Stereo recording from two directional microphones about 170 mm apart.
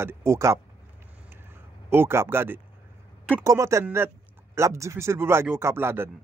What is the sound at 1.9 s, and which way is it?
Speech, 15° right (ahead or behind).